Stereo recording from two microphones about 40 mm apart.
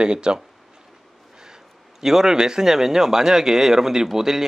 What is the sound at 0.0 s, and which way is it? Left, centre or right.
Speech, right.